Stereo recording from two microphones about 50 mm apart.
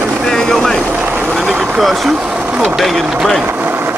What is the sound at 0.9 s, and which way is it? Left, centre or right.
Vehicle, right.